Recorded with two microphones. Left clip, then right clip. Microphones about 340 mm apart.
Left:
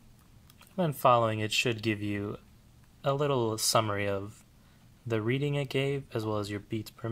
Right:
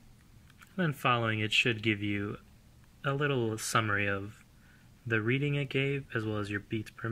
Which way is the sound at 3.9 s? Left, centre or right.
Left.